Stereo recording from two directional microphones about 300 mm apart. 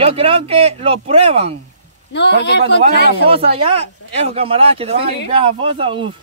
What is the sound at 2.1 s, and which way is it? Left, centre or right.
Speech, left.